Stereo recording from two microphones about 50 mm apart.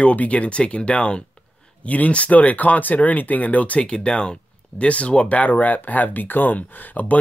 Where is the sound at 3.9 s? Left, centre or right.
Centre.